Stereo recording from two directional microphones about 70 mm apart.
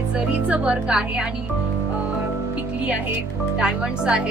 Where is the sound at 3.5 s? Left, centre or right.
Centre.